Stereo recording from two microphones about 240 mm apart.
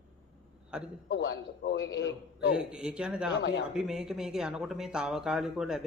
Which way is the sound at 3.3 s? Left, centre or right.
Left.